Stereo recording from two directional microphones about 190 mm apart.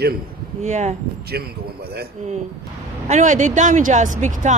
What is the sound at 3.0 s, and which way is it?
Speech, 40° right (ahead or behind).